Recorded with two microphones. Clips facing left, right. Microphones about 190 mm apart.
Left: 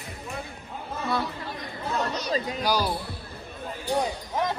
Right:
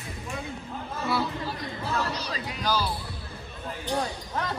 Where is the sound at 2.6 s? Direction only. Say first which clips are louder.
Left 1 dB; 15° left (ahead or behind).